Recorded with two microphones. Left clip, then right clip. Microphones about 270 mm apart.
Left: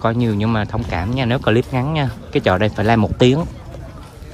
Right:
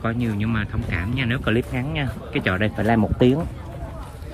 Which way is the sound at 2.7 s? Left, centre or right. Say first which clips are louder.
Left 4 dB; right.